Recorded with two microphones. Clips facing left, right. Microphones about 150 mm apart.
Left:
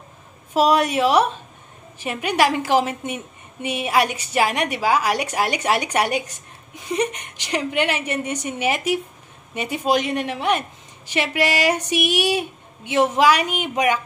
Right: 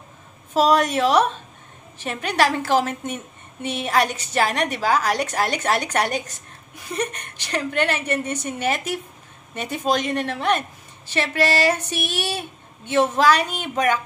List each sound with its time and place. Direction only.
0.5 s a woman's voice: 10° left (ahead or behind)